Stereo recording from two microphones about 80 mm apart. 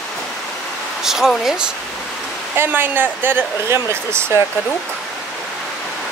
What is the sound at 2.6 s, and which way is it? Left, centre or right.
Speech, right.